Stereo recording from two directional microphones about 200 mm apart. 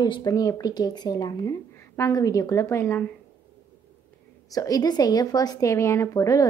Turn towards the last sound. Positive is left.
turn(degrees=15)  # may be behind; listen again after turning